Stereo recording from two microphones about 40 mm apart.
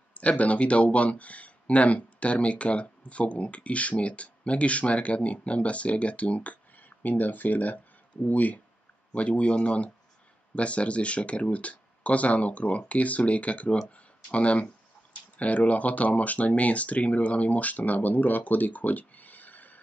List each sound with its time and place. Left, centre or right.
0.1 s speech: left